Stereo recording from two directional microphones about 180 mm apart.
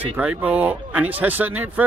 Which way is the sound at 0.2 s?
10° right (ahead or behind).